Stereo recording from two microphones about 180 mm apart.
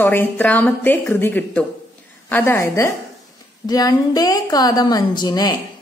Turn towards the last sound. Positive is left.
turn(degrees=20)  # may be behind; listen again after turning